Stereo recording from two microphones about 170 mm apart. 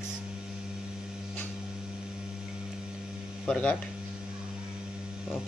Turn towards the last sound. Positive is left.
turn(degrees=5)  # may be behind; listen again after turning